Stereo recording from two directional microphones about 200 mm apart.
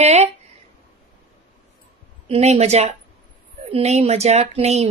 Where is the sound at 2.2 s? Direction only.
30° right (ahead or behind).